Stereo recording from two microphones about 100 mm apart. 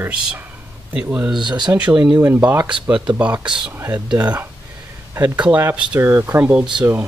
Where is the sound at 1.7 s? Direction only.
15° right (ahead or behind).